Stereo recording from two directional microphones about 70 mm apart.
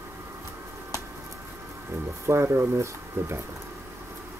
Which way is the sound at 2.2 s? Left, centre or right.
Right.